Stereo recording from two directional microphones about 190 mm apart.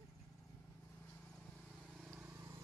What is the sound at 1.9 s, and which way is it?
Vehicle, 5° right (ahead or behind).